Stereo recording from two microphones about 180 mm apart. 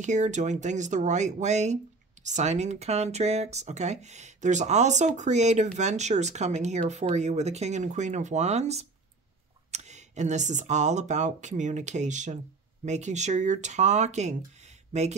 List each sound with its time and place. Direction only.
0.0 s speech: 40° right (ahead or behind)